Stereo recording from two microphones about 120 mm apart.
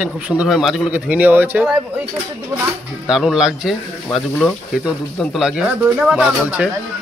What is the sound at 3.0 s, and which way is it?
Speech, 5° right (ahead or behind).